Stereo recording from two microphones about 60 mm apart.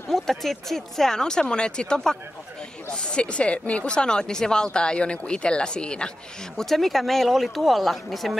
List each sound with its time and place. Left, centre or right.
0.1 s speech: centre
6.6 s speech: centre